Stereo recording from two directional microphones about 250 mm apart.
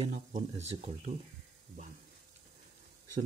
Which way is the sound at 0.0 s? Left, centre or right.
Right.